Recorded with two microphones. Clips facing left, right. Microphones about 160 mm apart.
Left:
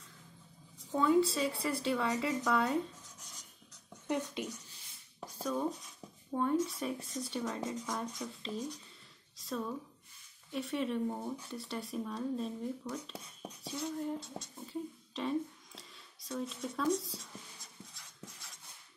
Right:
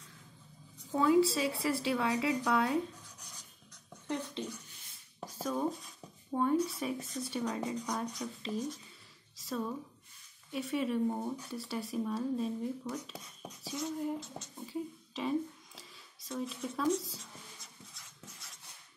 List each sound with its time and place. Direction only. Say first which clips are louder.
0.9 s speech: right 2 dB; 5° right (ahead or behind)
4.1 s speech: left 2 dB; 15° left (ahead or behind)
5.2 s a sound: right 1 dB; 5° right (ahead or behind)
6.6 s speech: right 1 dB; centre (ahead or behind)
14.7 s speech: right 2 dB; 5° right (ahead or behind)